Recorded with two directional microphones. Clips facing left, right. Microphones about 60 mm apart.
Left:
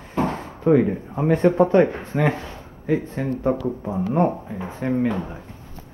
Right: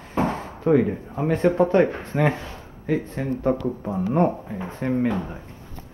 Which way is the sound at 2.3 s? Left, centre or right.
Centre.